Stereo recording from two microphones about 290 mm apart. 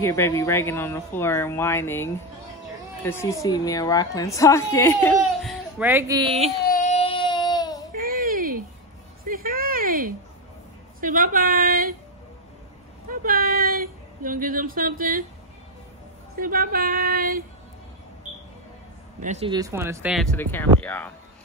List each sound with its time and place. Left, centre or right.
0.0 s a woman's voice: centre
3.1 s a woman's voice: centre
6.6 s baby cry: left
7.9 s a sound: right
11.0 s a woman's voice: right
13.1 s a sound: right
16.3 s speech: right
19.2 s speech: right; by 21.1 s centre